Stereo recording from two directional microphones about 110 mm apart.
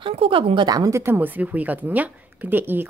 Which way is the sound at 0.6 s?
35° right (ahead or behind).